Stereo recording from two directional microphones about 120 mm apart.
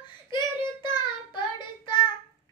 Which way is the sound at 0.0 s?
40° left (ahead or behind).